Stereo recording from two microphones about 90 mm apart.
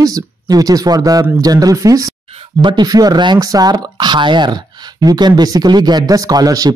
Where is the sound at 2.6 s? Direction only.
55° right (ahead or behind).